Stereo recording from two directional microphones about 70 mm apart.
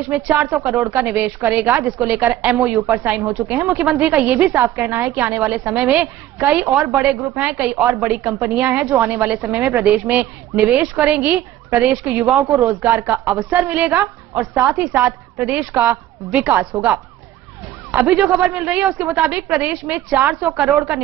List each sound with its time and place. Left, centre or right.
0.1 s a woman's voice: right
12.5 s a woman's voice: right
15.3 s a woman's voice: right